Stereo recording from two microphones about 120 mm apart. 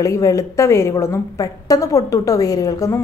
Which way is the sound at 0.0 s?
25° left (ahead or behind).